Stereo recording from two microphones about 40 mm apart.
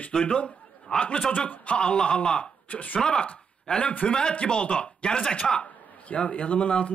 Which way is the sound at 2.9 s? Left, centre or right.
Centre.